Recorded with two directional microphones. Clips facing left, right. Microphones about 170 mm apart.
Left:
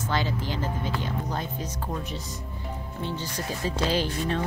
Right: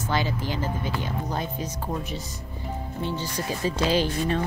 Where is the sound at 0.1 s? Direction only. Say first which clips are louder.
Right 2 dB; 10° right (ahead or behind).